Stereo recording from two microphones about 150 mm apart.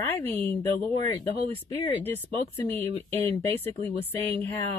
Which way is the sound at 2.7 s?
15° left (ahead or behind).